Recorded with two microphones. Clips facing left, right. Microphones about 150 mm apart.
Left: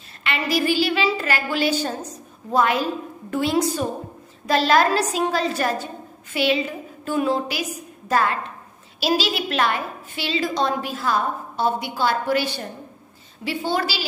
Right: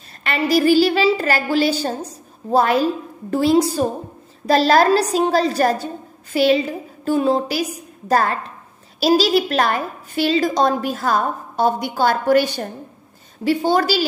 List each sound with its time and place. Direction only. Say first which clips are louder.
0.2 s a woman's voice: right 6 dB; 40° right (ahead or behind)